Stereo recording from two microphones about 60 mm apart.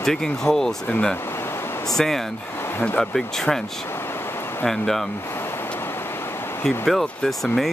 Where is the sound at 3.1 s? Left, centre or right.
Centre.